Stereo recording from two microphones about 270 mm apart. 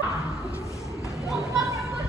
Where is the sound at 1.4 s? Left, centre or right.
Centre.